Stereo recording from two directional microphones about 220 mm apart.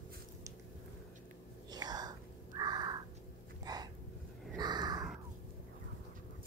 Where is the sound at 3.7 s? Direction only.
20° right (ahead or behind).